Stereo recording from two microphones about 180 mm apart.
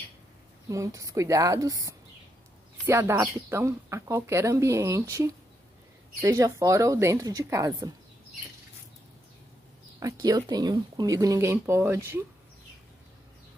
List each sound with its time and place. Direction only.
0.7 s speech: 20° right (ahead or behind)
9.9 s speech: 20° right (ahead or behind)